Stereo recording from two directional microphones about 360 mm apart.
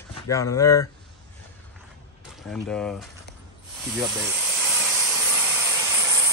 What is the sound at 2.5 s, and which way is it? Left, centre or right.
Speech, centre.